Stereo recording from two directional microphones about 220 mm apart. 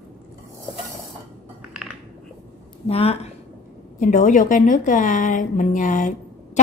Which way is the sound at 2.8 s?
25° left (ahead or behind).